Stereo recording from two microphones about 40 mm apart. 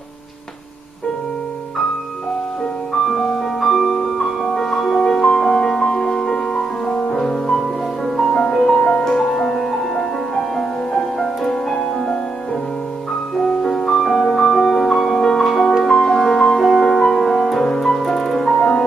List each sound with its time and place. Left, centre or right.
3.1 s music: centre
13.4 s music: centre
15.0 s music: centre
18.6 s music: centre